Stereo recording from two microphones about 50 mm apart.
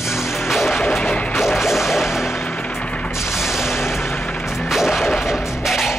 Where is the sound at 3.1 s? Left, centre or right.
Centre.